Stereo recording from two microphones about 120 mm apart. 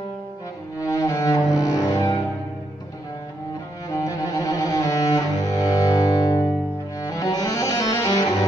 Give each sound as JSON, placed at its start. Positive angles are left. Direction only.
{"t": 0.7, "sound": "cello", "side_deg": 25}
{"t": 3.9, "sound": "cello", "side_deg": 30}
{"t": 7.1, "sound": "music", "side_deg": 30}